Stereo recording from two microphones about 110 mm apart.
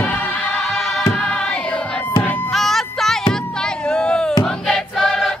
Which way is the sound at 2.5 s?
Centre (ahead or behind).